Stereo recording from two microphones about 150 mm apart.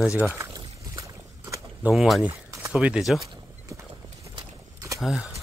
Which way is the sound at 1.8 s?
Centre (ahead or behind).